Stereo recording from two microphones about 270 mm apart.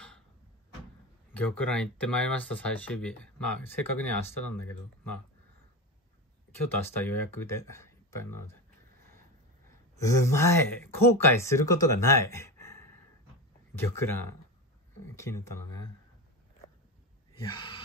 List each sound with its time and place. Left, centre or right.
1.3 s speech: centre
6.5 s speech: centre
9.9 s speech: centre
14.0 s speech: centre
17.4 s speech: centre